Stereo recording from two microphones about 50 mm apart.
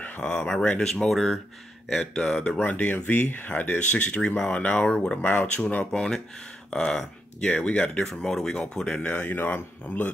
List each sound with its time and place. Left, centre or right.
0.0 s a sound: left
0.8 s speech: centre
2.6 s speech: left; by 5.1 s centre
5.1 s speech: left
5.9 s speech: centre
7.4 s speech: left